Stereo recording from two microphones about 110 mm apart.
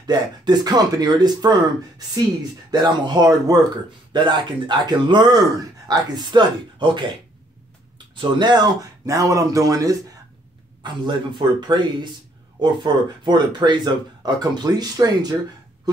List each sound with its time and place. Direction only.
0.0 s speech: 40° right (ahead or behind)
4.1 s speech: 45° right (ahead or behind)
8.2 s speech: 40° right (ahead or behind)
10.8 s speech: 45° right (ahead or behind)